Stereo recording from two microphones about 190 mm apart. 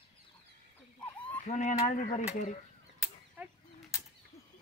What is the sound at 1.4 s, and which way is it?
Speech, 40° left (ahead or behind).